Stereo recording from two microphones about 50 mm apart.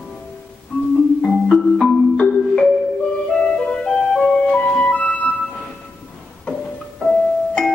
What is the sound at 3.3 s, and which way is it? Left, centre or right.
Music, centre.